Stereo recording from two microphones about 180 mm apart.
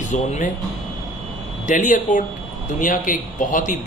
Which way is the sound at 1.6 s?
45° left (ahead or behind).